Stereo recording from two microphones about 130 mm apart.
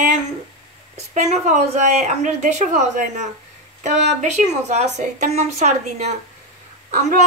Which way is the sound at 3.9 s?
60° right (ahead or behind).